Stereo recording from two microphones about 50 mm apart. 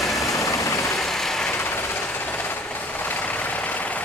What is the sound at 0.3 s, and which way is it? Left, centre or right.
Vehicle, left.